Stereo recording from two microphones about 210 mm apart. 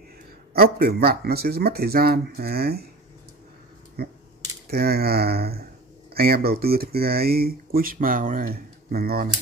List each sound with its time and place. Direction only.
0.5 s speech: 45° right (ahead or behind)
4.0 s speech: 50° right (ahead or behind)